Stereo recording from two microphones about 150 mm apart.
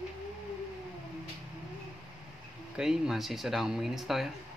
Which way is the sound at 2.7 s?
5° right (ahead or behind).